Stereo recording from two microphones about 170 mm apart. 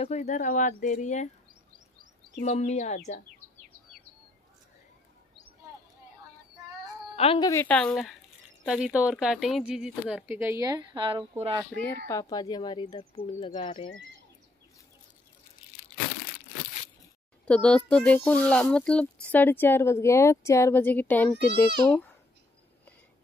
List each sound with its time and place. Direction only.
0.0 s speech: 40° left (ahead or behind)
2.4 s speech: 40° left (ahead or behind)
7.2 s a woman's voice: 35° left (ahead or behind)
7.4 s speech: 10° left (ahead or behind); by 11.6 s 30° right (ahead or behind)
11.7 s speech: 10° left (ahead or behind)
12.1 s speech: 20° left (ahead or behind)
17.5 s speech: 5° left (ahead or behind)